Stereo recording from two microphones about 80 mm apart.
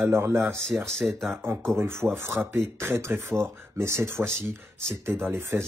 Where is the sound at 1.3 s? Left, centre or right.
Right.